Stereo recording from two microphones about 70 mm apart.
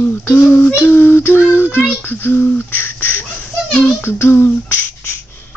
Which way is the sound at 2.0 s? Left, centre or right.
Left.